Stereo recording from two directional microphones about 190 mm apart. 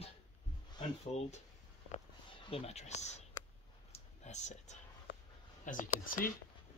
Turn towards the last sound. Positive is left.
turn(degrees=45)  # may be behind; listen again after turning